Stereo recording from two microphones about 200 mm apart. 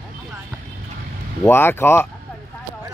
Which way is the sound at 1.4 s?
10° left (ahead or behind).